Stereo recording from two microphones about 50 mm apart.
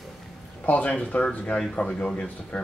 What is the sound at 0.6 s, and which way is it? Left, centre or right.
Speech, left.